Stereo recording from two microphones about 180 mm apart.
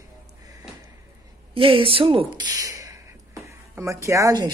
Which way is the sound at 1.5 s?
30° right (ahead or behind).